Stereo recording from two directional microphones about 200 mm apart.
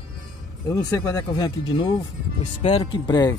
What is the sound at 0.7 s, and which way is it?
Speech, 15° left (ahead or behind).